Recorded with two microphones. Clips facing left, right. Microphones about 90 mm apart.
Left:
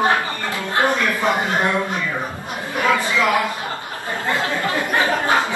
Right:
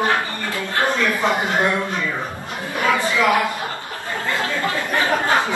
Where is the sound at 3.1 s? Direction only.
20° right (ahead or behind).